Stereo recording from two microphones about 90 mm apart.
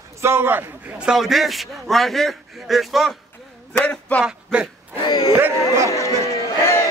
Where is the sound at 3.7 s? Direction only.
15° left (ahead or behind).